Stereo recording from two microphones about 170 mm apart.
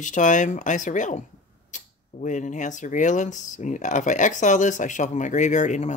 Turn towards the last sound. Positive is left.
turn(degrees=45)  # may be behind; listen again after turning